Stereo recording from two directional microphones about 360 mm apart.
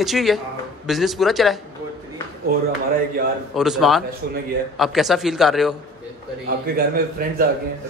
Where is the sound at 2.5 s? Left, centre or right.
Right.